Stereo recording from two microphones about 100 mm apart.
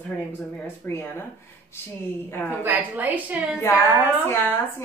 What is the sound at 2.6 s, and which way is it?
Speech, 15° right (ahead or behind).